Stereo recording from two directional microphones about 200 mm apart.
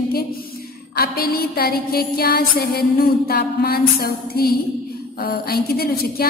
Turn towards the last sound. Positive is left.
turn(degrees=50)  # may be behind; listen again after turning